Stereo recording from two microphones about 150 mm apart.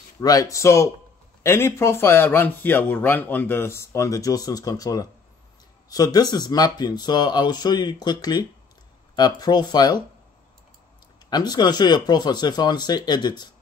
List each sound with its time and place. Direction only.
0.2 s a man's voice: 25° left (ahead or behind)
11.2 s speech: 30° left (ahead or behind)